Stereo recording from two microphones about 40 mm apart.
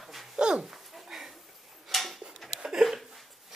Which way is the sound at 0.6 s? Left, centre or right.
Centre.